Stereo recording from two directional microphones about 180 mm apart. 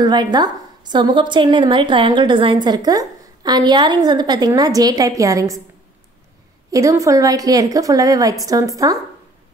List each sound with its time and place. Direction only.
0.0 s a woman's voice: 25° right (ahead or behind)
6.7 s a woman's voice: 15° right (ahead or behind)